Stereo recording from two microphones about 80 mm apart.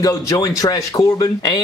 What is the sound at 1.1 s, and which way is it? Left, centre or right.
Speech, left.